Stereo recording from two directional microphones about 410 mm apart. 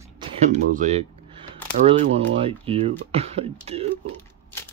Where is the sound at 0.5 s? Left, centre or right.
Centre.